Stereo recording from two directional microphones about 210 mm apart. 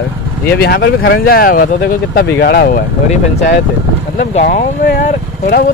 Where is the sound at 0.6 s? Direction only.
50° left (ahead or behind).